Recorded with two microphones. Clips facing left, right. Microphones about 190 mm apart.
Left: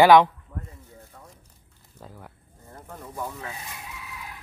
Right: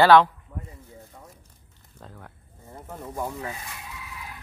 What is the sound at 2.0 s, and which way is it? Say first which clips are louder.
Speech: left 1 dB; 5° left (ahead or behind).